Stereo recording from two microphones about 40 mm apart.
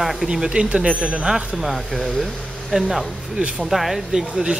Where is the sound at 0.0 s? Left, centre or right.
Centre.